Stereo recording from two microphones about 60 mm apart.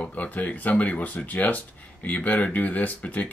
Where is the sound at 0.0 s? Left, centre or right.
Left.